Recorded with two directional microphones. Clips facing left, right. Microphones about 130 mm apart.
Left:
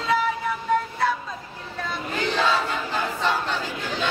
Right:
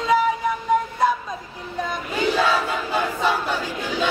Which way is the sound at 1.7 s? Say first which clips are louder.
Right 3 dB; 15° right (ahead or behind).